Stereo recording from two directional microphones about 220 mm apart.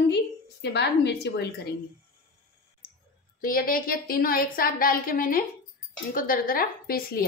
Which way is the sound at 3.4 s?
40° left (ahead or behind).